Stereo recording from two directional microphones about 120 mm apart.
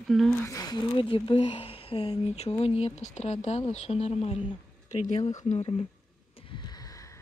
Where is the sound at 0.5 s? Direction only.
30° left (ahead or behind).